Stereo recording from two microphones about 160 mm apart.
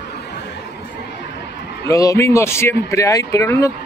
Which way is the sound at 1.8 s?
20° left (ahead or behind).